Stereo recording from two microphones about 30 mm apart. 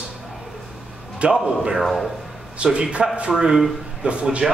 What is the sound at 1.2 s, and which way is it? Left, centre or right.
Speech, right.